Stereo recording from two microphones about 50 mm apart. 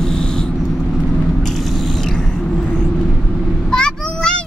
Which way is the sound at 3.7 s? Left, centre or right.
Centre.